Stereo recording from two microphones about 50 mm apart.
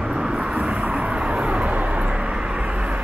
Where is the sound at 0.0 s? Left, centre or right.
Centre.